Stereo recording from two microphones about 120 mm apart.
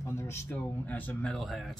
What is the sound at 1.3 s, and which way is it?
Speech, centre (ahead or behind).